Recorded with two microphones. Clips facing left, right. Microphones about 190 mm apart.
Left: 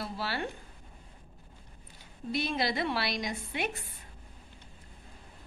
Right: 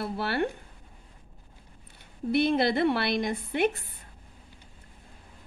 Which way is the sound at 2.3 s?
55° right (ahead or behind).